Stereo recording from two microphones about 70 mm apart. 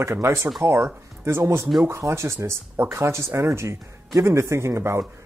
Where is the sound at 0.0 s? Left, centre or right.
Right.